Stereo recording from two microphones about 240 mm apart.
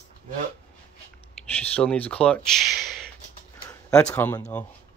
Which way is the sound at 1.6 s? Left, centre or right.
Centre.